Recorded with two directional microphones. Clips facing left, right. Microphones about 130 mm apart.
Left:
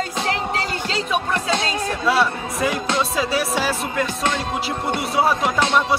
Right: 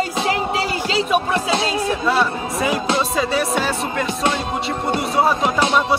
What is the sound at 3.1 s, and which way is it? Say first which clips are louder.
Speech: right 2 dB; centre (ahead or behind).